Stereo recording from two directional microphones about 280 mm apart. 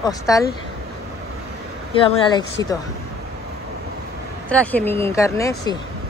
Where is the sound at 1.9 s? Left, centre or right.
Centre.